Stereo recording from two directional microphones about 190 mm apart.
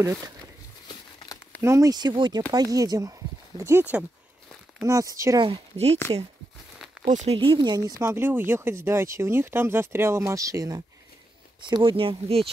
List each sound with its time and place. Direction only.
1.6 s speech: 15° right (ahead or behind)
7.1 s speech: 30° right (ahead or behind)
8.0 s speech: 10° right (ahead or behind); by 12.4 s 30° right (ahead or behind)